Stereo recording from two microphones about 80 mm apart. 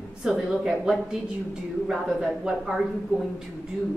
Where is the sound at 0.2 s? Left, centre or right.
Centre.